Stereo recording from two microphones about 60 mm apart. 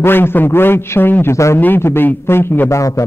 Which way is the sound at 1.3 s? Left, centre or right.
Left.